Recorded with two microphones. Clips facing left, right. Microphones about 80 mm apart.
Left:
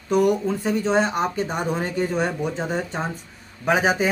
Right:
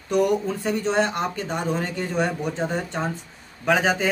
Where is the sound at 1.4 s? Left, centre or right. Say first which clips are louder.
Left 1 dB; centre.